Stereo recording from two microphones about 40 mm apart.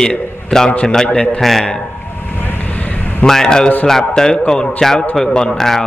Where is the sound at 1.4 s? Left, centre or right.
Centre.